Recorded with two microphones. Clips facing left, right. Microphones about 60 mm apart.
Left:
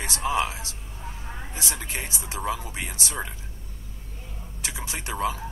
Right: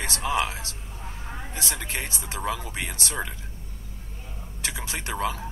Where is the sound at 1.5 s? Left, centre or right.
Right.